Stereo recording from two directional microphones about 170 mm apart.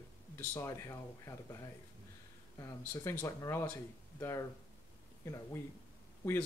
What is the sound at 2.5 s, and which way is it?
Speech, 15° left (ahead or behind).